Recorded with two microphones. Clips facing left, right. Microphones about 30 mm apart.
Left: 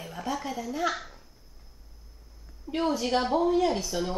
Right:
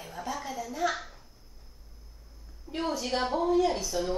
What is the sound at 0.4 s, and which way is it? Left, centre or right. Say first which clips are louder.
Speech: right 2 dB; centre.